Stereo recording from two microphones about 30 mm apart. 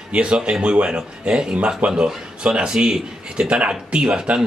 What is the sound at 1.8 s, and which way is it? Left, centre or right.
Speech, right.